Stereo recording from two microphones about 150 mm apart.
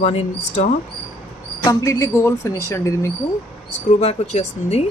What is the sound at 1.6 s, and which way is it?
Speech, 25° left (ahead or behind).